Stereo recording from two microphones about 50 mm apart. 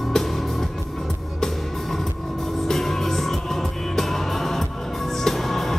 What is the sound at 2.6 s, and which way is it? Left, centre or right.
Music, centre.